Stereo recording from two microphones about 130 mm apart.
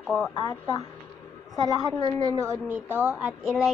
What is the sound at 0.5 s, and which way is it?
Speech, 25° left (ahead or behind).